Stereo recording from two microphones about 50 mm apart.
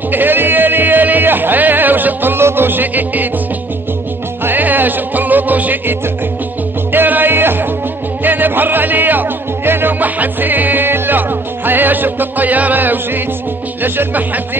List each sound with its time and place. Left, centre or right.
0.1 s a sound: right
2.4 s music: right
4.5 s music: right
13.8 s speech: right